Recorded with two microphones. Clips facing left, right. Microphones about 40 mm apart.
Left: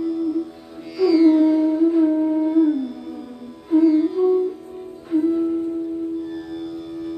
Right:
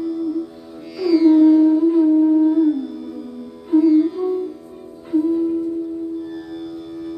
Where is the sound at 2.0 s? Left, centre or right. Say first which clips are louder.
Right 4 dB; left.